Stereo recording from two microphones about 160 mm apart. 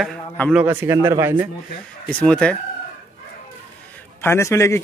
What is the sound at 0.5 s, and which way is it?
Speech, 15° right (ahead or behind).